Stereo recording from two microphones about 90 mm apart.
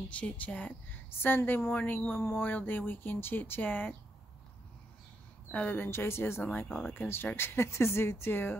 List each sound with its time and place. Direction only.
0.1 s speech: 15° left (ahead or behind)
5.5 s speech: 15° left (ahead or behind)